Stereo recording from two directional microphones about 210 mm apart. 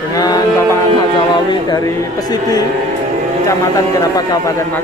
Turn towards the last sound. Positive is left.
turn(degrees=15)  # may be behind; listen again after turning